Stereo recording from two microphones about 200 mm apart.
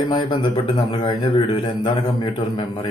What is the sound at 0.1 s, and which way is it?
Speech, 20° left (ahead or behind).